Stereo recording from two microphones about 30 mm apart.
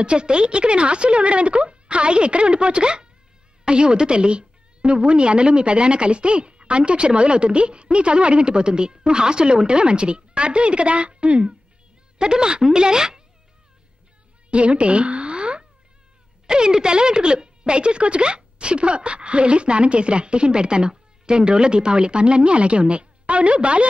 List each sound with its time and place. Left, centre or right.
0.0 s a woman's voice: right
12.2 s speech: right
14.5 s a sound: right
16.4 s a woman's voice: right